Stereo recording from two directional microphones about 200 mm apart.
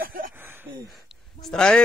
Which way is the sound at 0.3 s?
10° right (ahead or behind).